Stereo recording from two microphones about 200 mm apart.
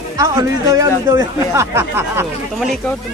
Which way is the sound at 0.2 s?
15° right (ahead or behind).